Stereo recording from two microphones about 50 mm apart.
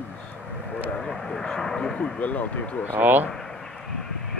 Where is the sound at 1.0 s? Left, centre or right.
Centre.